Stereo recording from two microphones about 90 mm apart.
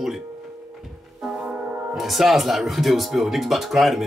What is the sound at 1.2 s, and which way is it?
Speech, 5° right (ahead or behind).